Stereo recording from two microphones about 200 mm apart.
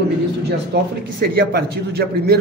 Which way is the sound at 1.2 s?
50° right (ahead or behind).